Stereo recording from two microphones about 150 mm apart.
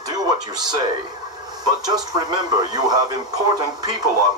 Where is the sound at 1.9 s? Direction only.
25° right (ahead or behind).